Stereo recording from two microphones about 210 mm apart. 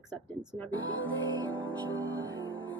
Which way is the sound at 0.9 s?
70° left (ahead or behind).